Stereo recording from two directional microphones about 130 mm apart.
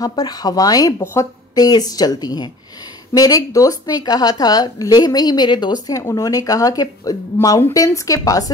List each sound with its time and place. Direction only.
0.0 s speech: 30° left (ahead or behind)